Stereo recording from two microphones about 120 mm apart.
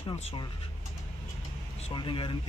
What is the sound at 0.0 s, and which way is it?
Speech, 55° left (ahead or behind).